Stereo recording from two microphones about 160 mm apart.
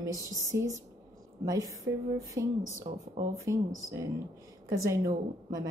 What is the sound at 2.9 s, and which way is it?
Speech, 35° right (ahead or behind).